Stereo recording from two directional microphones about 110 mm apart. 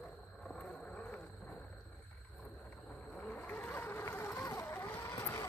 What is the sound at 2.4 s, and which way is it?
Vehicle, 10° left (ahead or behind).